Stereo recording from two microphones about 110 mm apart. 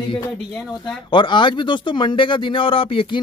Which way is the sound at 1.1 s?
45° left (ahead or behind).